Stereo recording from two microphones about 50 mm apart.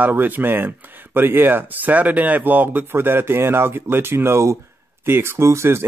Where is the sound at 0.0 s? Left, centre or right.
Right.